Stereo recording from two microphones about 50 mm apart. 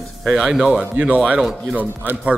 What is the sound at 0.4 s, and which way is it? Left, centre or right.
Speech, centre.